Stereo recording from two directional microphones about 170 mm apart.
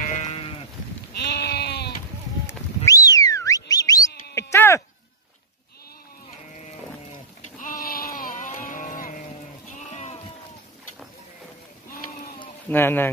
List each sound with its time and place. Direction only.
0.0 s sheep: 45° left (ahead or behind)
1.1 s sheep: 80° left
2.4 s a sound: 20° left (ahead or behind)
4.4 s sheep: 15° left (ahead or behind)
7.4 s vehicle: 50° left (ahead or behind)
9.8 s sheep: 45° left (ahead or behind)
12.6 s speech: 10° left (ahead or behind)